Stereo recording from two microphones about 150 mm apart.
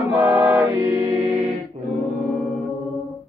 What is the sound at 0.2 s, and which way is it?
Choir, 10° right (ahead or behind).